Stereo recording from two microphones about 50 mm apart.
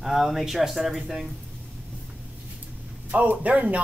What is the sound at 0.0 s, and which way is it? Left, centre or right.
Speech, centre.